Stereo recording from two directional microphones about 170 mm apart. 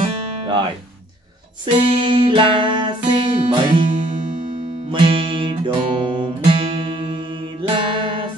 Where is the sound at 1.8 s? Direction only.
30° right (ahead or behind).